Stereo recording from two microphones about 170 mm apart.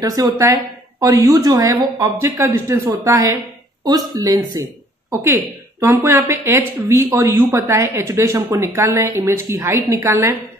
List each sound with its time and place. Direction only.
0.0 s speech: 20° right (ahead or behind)